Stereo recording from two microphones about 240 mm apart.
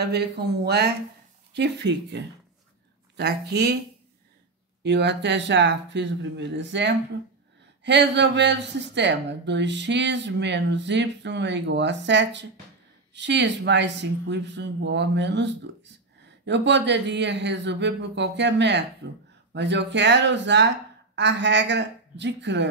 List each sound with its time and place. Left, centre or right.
0.0 s speech: right
4.8 s speech: right